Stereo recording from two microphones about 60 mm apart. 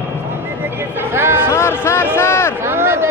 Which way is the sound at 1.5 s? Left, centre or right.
Left.